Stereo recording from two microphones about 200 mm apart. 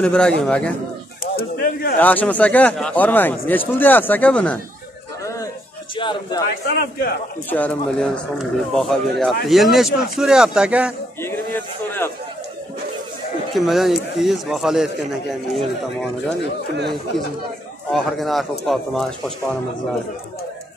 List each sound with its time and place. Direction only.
0.0 s a man's voice: 5° left (ahead or behind)
1.2 s bird: 45° left (ahead or behind)
2.0 s speech: 10° left (ahead or behind)
5.2 s a sound: 15° left (ahead or behind)
5.9 s speech: 25° left (ahead or behind)
6.7 s a man's voice: 50° left (ahead or behind)
7.4 s a man's voice: 10° left (ahead or behind)
11.1 s a man's voice: 10° left (ahead or behind)
13.5 s a man's voice: centre (ahead or behind)
17.9 s a man's voice: centre (ahead or behind)